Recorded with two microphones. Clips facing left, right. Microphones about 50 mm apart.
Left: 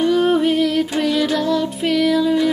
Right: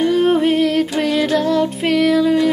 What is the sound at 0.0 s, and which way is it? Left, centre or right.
Music, right.